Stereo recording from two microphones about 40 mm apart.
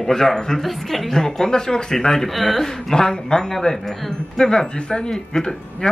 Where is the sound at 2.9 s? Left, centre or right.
Centre.